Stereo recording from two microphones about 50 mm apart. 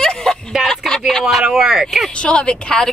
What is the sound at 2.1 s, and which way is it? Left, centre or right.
Speech, left.